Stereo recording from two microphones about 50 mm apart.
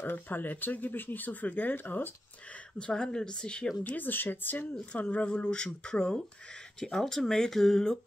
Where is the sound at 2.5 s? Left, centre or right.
Centre.